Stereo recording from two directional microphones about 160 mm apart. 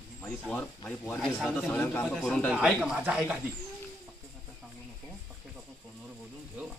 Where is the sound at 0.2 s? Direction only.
15° left (ahead or behind); by 3.3 s 10° right (ahead or behind).